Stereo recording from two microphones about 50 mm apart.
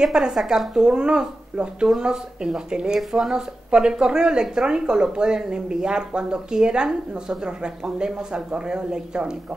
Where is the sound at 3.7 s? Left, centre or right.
Centre.